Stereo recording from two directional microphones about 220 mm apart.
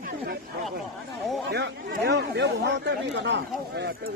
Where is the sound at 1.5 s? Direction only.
50° right (ahead or behind).